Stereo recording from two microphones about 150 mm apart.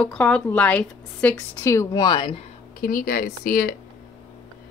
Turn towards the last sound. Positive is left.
turn(degrees=80)